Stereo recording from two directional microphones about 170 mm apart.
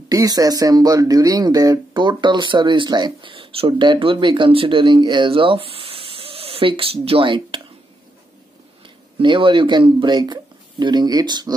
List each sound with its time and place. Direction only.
0.1 s speech: 20° right (ahead or behind)
8.8 s speech: 30° right (ahead or behind)